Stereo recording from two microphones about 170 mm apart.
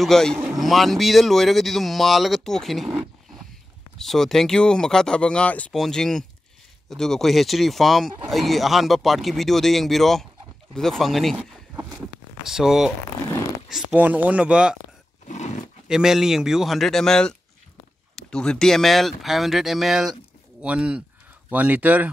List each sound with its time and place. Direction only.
0.0 s speech: 5° left (ahead or behind)
12.4 s speech: 5° right (ahead or behind)
15.2 s a sound: 45° left (ahead or behind)
15.9 s speech: 5° right (ahead or behind)